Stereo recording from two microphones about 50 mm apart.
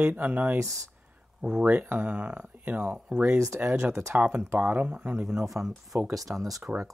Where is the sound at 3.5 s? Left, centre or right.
Right.